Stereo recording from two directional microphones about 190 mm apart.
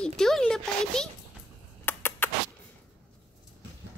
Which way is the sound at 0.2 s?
5° left (ahead or behind).